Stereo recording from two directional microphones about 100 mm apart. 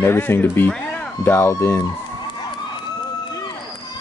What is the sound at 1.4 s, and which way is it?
Speech, 25° left (ahead or behind).